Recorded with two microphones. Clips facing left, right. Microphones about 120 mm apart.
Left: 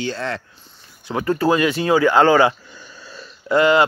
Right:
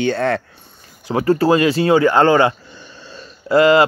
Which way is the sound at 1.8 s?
65° right (ahead or behind).